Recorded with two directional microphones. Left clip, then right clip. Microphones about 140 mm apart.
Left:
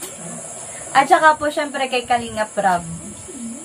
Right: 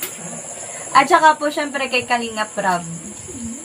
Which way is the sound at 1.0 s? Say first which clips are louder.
Left 2 dB; 10° left (ahead or behind).